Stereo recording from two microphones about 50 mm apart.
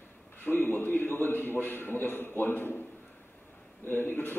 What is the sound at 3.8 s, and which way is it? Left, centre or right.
Speech, left.